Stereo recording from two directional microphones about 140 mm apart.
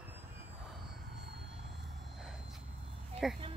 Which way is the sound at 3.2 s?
5° right (ahead or behind).